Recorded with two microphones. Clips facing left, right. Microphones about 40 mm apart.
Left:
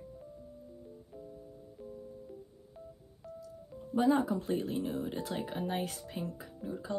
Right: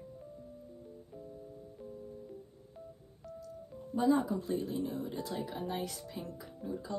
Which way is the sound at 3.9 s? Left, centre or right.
Left.